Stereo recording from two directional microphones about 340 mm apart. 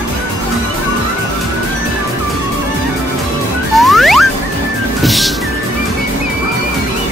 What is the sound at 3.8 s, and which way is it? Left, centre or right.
Music, centre.